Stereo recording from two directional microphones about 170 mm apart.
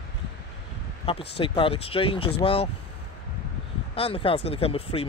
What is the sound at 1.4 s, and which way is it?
Speech, 30° left (ahead or behind).